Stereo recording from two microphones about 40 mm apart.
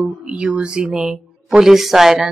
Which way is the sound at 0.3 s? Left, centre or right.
Right.